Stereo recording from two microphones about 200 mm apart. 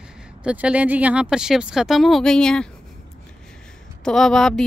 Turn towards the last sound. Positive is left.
turn(degrees=0)  # may be behind; listen again after turning